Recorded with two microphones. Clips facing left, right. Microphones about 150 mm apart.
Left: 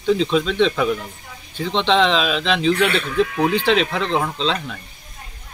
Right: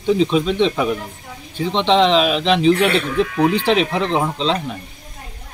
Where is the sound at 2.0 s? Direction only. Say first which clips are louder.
Right 3 dB; 5° right (ahead or behind).